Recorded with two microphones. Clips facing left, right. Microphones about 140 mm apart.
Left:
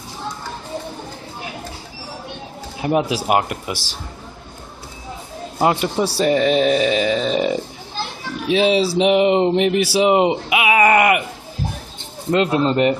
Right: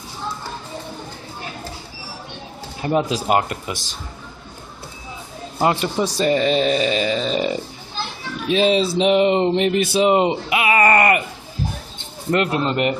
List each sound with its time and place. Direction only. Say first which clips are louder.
2.8 s speech: left 1 dB; 10° left (ahead or behind)
5.6 s speech: left 1 dB; 10° left (ahead or behind)
6.2 s speech: left 2 dB; 65° left (ahead or behind)
8.5 s speech: left 1 dB; 15° left (ahead or behind)
12.3 s speech: left 3 dB; 20° left (ahead or behind)